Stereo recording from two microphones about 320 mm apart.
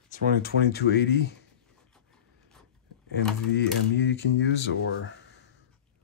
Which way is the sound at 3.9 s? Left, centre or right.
Left.